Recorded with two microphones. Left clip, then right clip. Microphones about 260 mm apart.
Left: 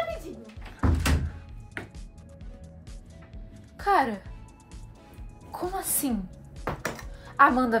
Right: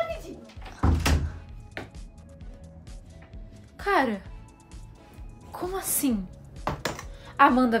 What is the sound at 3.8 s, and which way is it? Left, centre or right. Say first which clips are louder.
Speech: left 1 dB; centre.